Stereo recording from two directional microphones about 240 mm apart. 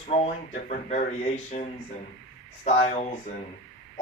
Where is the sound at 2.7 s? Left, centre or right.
Left.